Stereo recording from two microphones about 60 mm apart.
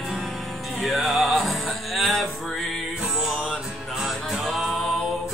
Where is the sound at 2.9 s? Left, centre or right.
Centre.